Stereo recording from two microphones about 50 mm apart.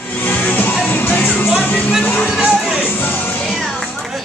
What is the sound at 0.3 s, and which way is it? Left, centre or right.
Music, left.